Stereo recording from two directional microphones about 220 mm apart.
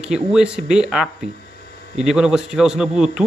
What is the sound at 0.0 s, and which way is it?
Speech, 5° right (ahead or behind).